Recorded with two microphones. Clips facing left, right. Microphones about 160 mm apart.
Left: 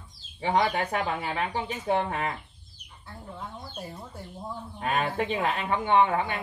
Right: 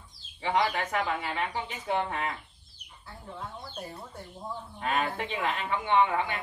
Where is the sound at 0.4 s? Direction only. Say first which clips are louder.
Left 3 dB; 35° left (ahead or behind).